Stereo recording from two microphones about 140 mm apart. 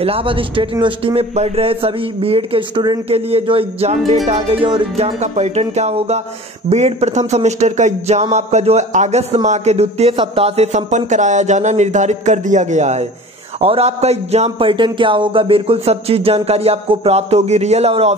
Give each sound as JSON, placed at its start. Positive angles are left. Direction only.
{"t": 0.0, "sound": "speech", "side_deg": -40}
{"t": 3.1, "sound": "a man's voice", "side_deg": -45}
{"t": 4.9, "sound": "a man's voice", "side_deg": -50}
{"t": 13.6, "sound": "a man's voice", "side_deg": -45}